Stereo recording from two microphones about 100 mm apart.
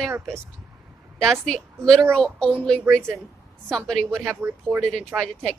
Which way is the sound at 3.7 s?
5° left (ahead or behind).